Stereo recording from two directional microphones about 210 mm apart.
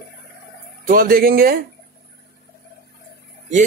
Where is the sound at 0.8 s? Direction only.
45° right (ahead or behind).